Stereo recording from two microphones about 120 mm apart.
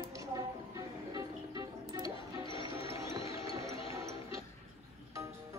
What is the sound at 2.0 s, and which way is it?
Music, 45° left (ahead or behind).